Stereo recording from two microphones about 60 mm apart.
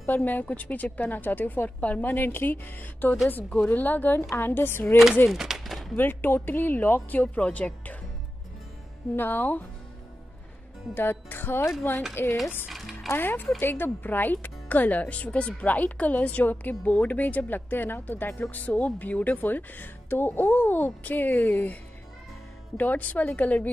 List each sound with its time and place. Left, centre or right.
0.0 s a woman's voice: left
5.3 s a sound: centre
5.9 s a woman's voice: left
9.1 s a woman's voice: left
11.0 s a woman's voice: left
12.6 s music: centre
13.1 s a woman's voice: left
22.8 s speech: left